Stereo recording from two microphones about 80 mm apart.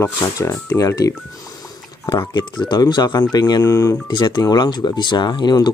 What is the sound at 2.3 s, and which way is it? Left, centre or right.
Speech, left.